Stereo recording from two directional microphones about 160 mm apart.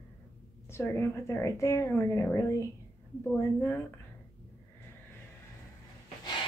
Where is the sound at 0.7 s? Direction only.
15° left (ahead or behind).